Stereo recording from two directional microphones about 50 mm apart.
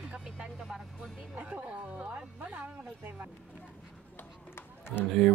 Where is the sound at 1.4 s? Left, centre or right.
Right.